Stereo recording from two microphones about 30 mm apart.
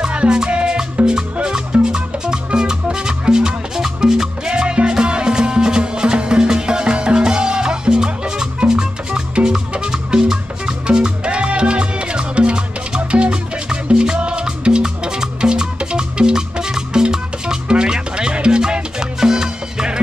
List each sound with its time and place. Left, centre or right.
0.0 s music: right
4.5 s music: right
10.9 s salsa music: right
17.6 s music: right